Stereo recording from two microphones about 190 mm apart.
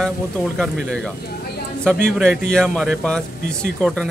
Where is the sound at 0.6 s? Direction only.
Centre (ahead or behind).